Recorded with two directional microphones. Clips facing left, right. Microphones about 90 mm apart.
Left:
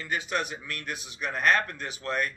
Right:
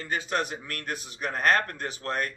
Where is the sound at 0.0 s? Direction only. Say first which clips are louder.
Right 1 dB; 35° right (ahead or behind).